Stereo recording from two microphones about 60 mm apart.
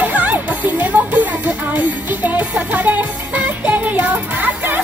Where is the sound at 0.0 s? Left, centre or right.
Right.